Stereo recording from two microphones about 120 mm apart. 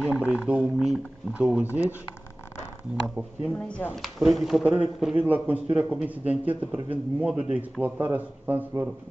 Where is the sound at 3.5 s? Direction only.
10° left (ahead or behind).